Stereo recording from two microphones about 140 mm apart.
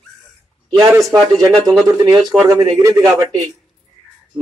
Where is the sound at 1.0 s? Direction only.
Centre (ahead or behind).